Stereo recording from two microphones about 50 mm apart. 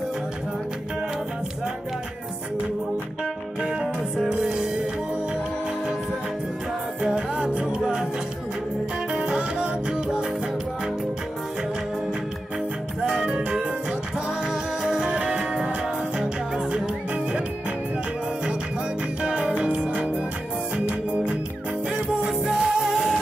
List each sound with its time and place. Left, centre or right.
3.6 s music: centre
7.0 s music: centre
9.1 s music: centre
13.0 s music: centre
19.2 s music: right
22.3 s music: centre